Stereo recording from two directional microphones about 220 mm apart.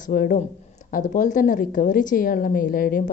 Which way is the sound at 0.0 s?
40° left (ahead or behind).